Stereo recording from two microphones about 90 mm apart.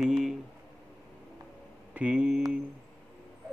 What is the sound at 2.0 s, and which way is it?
Speech, 15° right (ahead or behind).